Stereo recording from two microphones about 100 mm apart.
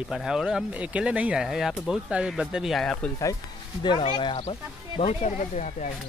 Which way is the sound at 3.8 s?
50° left (ahead or behind).